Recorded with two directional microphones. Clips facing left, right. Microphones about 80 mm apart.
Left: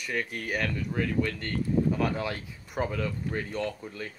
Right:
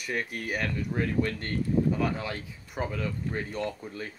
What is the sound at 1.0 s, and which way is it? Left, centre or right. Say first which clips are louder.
Speech: even; right.